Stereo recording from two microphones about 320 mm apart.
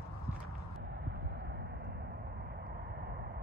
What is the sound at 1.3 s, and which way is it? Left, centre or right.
Vehicle, right.